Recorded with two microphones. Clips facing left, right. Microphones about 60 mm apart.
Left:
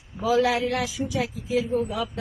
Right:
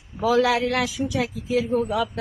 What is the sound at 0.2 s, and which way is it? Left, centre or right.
A man's voice, right.